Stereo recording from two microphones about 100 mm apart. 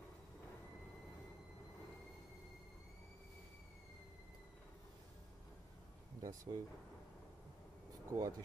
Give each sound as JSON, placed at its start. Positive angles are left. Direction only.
{"t": 6.2, "sound": "speech", "side_deg": -35}
{"t": 8.1, "sound": "speech", "side_deg": -35}